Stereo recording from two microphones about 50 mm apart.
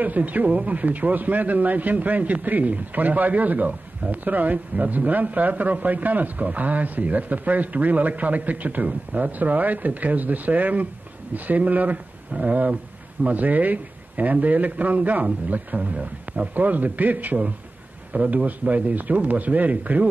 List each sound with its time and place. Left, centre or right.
0.0 s a man's voice: right